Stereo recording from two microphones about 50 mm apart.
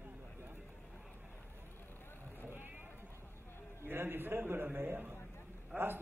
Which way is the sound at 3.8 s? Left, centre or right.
Right.